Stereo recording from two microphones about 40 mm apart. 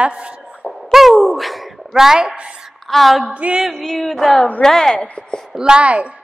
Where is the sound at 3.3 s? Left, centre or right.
Right.